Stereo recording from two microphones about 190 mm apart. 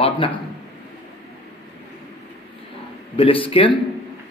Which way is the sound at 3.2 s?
30° left (ahead or behind).